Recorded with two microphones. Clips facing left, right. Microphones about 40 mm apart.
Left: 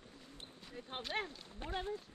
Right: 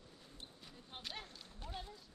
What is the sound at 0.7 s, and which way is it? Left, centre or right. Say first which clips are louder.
Speech: left 9 dB; left.